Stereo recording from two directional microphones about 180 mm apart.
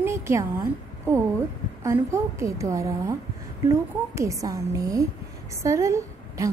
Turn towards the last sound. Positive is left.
turn(degrees=-15)  # may be behind; listen again after turning